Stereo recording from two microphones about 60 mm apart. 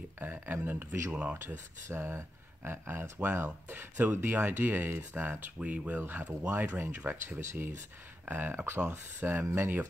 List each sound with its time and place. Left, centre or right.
0.2 s speech: right
1.1 s speech: right
1.4 s speech: right